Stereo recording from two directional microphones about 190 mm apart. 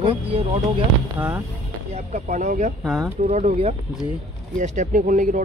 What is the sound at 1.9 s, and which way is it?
Speech, 40° right (ahead or behind).